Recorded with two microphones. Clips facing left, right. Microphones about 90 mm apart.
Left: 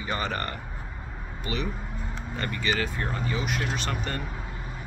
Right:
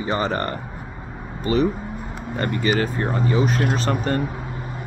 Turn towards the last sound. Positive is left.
turn(degrees=-40)  # may be behind; listen again after turning